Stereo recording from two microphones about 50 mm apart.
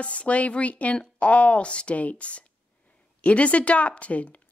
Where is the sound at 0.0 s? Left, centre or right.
Left.